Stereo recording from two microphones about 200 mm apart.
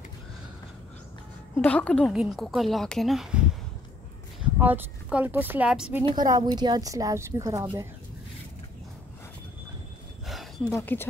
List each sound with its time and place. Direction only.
1.6 s speech: 5° left (ahead or behind)
4.6 s a woman's voice: 10° right (ahead or behind)
6.0 s a woman's voice: 20° right (ahead or behind)
10.2 s a sound: centre (ahead or behind)
10.7 s speech: 15° left (ahead or behind)